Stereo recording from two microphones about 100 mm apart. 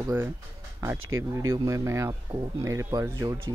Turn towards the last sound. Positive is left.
turn(degrees=-35)  # may be behind; listen again after turning